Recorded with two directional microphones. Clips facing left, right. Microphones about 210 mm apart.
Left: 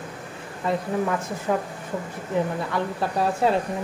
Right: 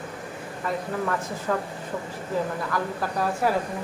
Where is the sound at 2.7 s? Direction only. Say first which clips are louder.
Left 2 dB; 25° left (ahead or behind).